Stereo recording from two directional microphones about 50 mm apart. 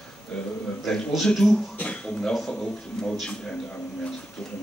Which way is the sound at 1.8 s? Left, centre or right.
Left.